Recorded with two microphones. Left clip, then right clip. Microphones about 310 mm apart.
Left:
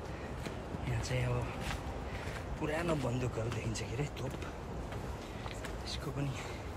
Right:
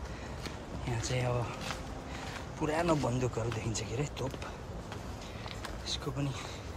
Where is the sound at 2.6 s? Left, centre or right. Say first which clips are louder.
Right 5 dB; centre.